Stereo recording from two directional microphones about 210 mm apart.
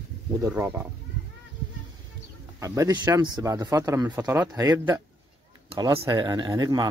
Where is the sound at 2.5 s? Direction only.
15° right (ahead or behind).